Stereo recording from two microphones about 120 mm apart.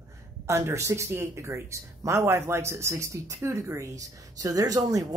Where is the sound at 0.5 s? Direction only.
25° right (ahead or behind).